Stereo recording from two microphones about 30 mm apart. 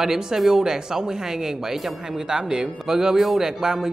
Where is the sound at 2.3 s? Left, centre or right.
Right.